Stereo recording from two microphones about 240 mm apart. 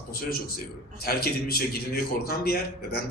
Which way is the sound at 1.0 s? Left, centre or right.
Left.